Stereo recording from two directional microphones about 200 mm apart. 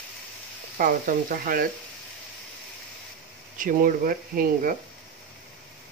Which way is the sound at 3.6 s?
45° right (ahead or behind).